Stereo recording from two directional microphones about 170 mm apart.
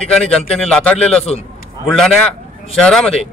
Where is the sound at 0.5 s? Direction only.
5° left (ahead or behind).